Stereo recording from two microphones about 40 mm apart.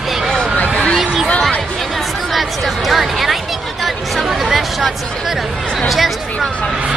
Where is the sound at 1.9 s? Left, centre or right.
Centre.